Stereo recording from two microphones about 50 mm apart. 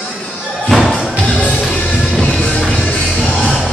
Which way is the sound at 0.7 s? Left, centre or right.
Centre.